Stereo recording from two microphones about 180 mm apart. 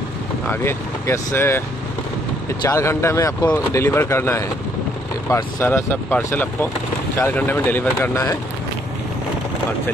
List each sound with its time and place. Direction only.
0.5 s speech: 15° left (ahead or behind)
2.6 s speech: 15° left (ahead or behind)